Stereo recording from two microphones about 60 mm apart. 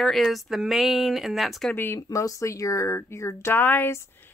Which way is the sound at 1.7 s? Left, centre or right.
Left.